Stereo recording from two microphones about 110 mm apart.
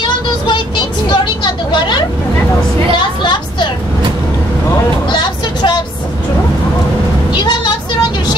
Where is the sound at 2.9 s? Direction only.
45° left (ahead or behind).